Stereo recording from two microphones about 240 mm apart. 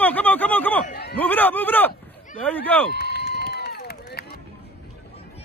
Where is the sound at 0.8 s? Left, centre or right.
Left.